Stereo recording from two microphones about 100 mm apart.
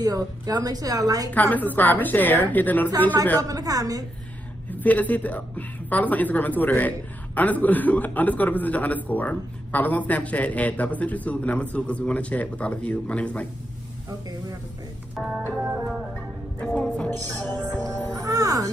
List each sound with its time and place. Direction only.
0.0 s a woman's voice: 40° right (ahead or behind)
1.5 s a man's voice: 15° left (ahead or behind)
3.4 s a woman's voice: 35° right (ahead or behind)
4.6 s a man's voice: 15° left (ahead or behind)
15.1 s music: centre (ahead or behind)
16.5 s music: 10° left (ahead or behind)
17.2 s speech: 20° left (ahead or behind)
18.2 s music: 35° right (ahead or behind)